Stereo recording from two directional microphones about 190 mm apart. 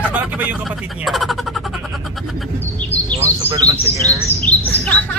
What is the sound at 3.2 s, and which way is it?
Speech, 15° right (ahead or behind).